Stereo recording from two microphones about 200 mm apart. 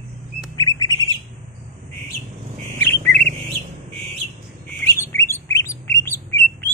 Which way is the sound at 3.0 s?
35° right (ahead or behind).